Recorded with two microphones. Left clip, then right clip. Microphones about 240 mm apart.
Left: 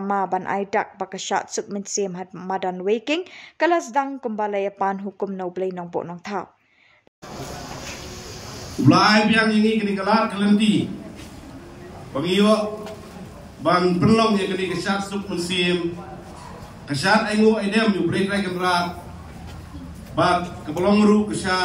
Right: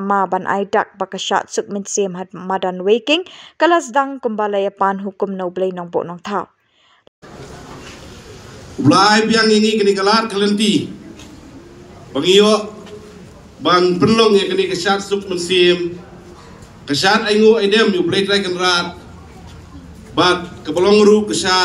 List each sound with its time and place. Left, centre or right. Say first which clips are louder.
0.0 s speech: right 6 dB; centre
8.8 s a man's voice: right 4 dB; right
12.1 s a man's voice: right 8 dB; right
13.7 s a man's voice: right 5 dB; right
16.8 s a man's voice: right 5 dB; right
20.2 s a man's voice: right 5 dB; right